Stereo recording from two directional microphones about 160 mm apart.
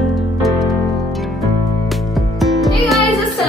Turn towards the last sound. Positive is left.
turn(degrees=0)  # may be behind; listen again after turning